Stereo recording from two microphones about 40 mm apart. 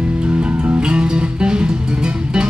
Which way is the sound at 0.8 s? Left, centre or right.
Right.